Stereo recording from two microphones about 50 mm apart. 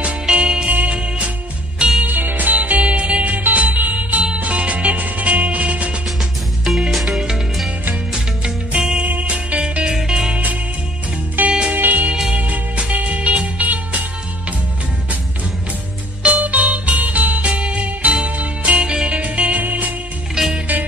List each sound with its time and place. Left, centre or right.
0.0 s music: right
1.8 s music: centre
2.0 s music: right
3.4 s music: right
7.1 s music: centre
8.7 s music: centre
9.0 s music: right
11.7 s music: right
12.1 s music: right
16.2 s music: right
20.3 s music: centre